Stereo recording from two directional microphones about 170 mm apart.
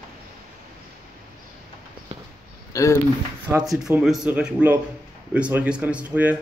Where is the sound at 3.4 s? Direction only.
15° right (ahead or behind).